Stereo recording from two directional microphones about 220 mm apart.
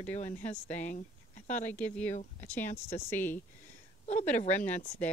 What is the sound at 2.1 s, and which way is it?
Speech, 30° left (ahead or behind).